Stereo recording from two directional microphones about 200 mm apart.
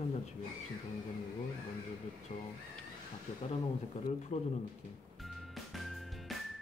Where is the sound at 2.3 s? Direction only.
35° left (ahead or behind).